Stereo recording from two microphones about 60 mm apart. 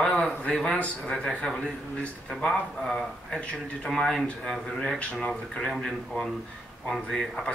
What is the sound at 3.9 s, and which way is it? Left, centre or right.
A man's voice, centre.